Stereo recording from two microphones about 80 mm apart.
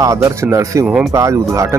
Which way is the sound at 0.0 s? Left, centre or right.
Right.